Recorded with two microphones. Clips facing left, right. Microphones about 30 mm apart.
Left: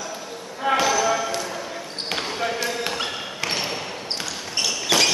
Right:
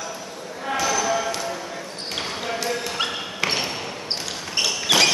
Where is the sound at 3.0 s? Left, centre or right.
Centre.